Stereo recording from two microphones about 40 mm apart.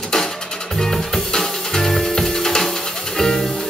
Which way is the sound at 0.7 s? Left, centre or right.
Centre.